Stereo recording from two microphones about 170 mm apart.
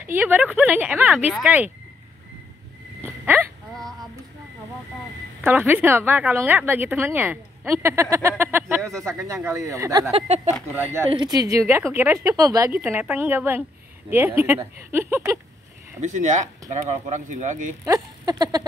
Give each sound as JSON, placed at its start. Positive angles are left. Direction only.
{"t": 0.0, "sound": "a woman's voice", "side_deg": -10}
{"t": 3.0, "sound": "a sound", "side_deg": -10}
{"t": 3.7, "sound": "a sound", "side_deg": 0}
{"t": 5.4, "sound": "a woman's voice", "side_deg": -10}
{"t": 10.1, "sound": "speech", "side_deg": -40}
{"t": 10.7, "sound": "a woman's voice", "side_deg": -15}
{"t": 11.1, "sound": "a woman's voice", "side_deg": -25}
{"t": 16.0, "sound": "speech", "side_deg": -45}
{"t": 17.8, "sound": "speech", "side_deg": -20}